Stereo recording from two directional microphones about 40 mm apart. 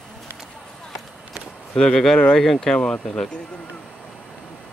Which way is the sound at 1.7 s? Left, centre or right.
Left.